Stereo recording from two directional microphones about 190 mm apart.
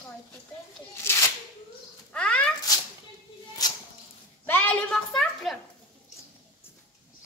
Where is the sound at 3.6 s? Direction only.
20° left (ahead or behind).